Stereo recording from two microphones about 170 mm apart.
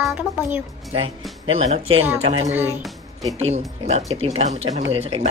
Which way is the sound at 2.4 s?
10° right (ahead or behind).